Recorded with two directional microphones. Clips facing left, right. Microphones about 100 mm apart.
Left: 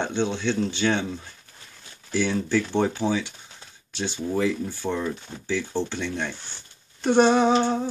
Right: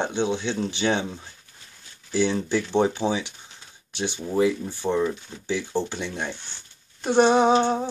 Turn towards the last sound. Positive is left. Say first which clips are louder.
# right 1 dB
turn(degrees=-20)  # may be behind; listen again after turning